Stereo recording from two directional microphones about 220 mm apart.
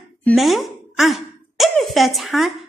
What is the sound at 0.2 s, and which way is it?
A woman's voice, 5° left (ahead or behind).